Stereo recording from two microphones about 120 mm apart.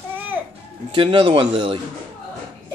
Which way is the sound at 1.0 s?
45° right (ahead or behind).